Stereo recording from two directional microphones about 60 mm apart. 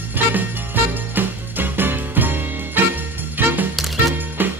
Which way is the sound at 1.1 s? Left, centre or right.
Right.